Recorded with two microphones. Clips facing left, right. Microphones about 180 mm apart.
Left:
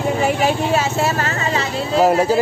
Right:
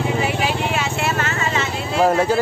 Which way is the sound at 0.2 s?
45° left (ahead or behind).